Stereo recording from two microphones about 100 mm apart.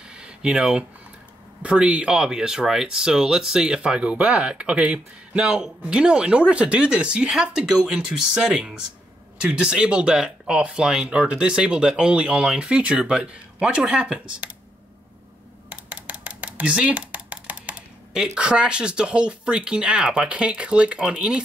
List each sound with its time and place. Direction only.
0.1 s a sound: 10° right (ahead or behind)
1.6 s speech: 10° right (ahead or behind)
15.7 s speech: 15° right (ahead or behind)